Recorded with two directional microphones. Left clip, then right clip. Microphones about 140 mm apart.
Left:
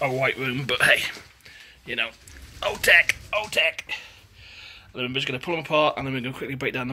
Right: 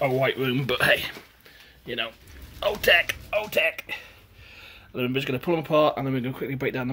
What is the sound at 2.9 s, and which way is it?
Speech, 50° right (ahead or behind).